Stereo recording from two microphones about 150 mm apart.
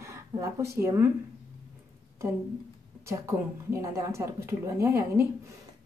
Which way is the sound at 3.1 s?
20° right (ahead or behind).